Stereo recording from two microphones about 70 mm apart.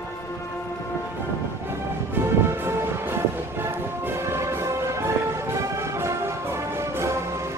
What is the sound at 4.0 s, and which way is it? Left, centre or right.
Music, right.